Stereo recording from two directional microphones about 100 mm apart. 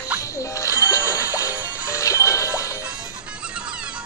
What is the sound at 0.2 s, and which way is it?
Music, 30° left (ahead or behind).